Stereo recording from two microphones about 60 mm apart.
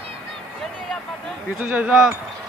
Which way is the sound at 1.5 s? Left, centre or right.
Right.